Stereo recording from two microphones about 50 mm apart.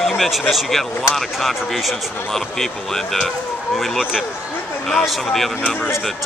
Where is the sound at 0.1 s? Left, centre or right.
Centre.